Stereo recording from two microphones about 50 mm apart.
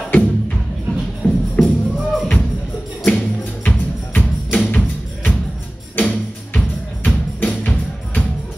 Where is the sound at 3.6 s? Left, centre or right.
Left.